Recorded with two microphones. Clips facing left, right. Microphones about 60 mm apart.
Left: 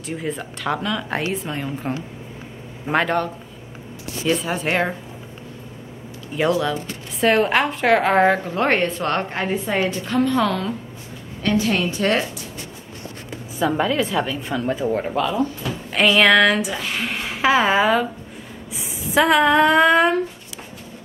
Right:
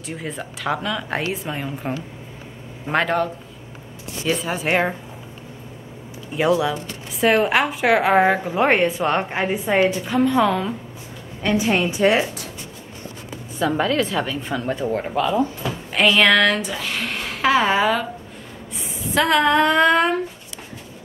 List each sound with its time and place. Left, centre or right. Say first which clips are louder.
0.0 s speech: left 3 dB; centre
4.3 s speech: even; centre
6.3 s a woman's voice: right 1 dB; centre
10.0 s a woman's voice: right 1 dB; centre
13.6 s speech: even; centre
19.0 s speech: left 2 dB; centre